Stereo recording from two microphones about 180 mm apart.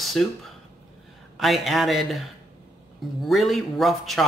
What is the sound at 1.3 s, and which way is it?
Speech, centre (ahead or behind).